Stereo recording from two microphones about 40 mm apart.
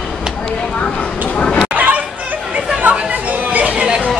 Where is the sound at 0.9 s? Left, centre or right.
Left.